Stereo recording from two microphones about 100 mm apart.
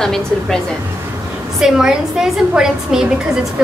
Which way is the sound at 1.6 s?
5° right (ahead or behind).